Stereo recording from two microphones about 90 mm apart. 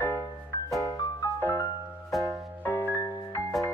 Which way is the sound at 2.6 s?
20° left (ahead or behind).